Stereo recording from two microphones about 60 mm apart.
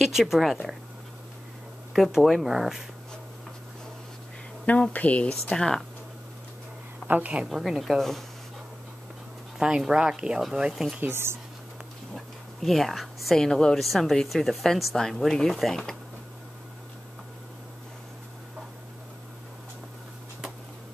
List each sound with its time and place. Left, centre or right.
0.0 s speech: centre
2.0 s speech: centre
4.9 s speech: left
5.3 s speech: centre
7.1 s a woman's voice: right
7.4 s speech: centre
9.6 s speech: centre
11.0 s speech: right
12.6 s speech: centre